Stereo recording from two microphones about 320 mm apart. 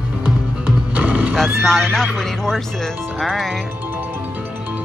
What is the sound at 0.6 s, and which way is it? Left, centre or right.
Speech, centre.